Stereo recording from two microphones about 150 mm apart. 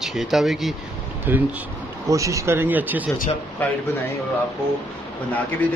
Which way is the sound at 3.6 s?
10° left (ahead or behind).